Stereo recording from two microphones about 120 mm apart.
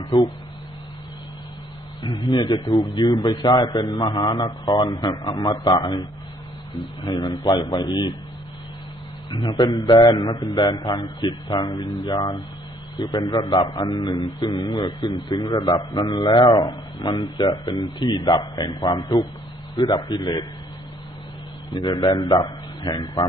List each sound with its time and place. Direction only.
0.1 s a man's voice: 40° left (ahead or behind)
2.1 s a man's voice: 35° left (ahead or behind)
9.3 s a man's voice: 45° left (ahead or behind)
9.6 s a man's voice: 30° left (ahead or behind)
21.6 s a man's voice: 40° left (ahead or behind)